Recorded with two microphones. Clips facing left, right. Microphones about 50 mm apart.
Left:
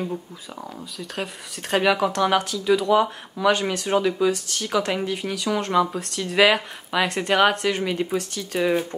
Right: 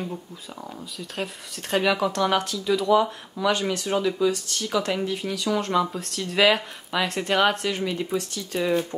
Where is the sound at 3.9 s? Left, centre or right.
Left.